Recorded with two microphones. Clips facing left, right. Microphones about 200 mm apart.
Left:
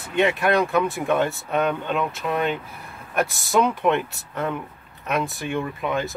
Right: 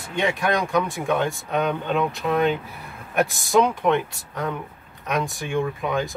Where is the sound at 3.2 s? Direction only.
Centre (ahead or behind).